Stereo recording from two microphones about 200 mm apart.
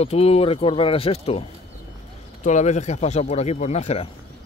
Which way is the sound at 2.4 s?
35° left (ahead or behind).